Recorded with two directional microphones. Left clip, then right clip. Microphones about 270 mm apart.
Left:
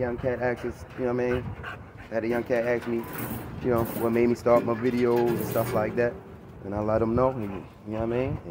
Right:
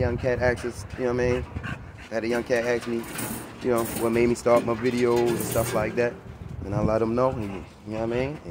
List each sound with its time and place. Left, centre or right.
0.0 s speech: centre